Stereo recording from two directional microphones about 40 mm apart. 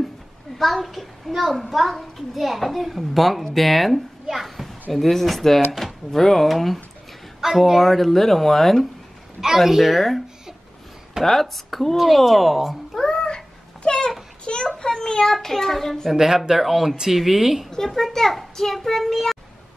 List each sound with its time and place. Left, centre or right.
0.6 s a child's voice: centre
9.6 s a child's voice: centre
11.2 s a child's voice: centre
13.0 s cat: centre
13.8 s a sound: left
14.8 s a child's voice: centre
16.1 s speech: centre
17.6 s a child's voice: centre